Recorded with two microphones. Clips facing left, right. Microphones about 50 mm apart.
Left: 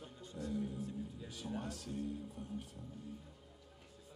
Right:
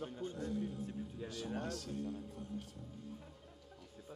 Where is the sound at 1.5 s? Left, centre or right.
Centre.